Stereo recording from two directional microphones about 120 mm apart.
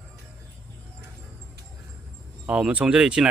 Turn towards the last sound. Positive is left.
turn(degrees=-5)  # may be behind; listen again after turning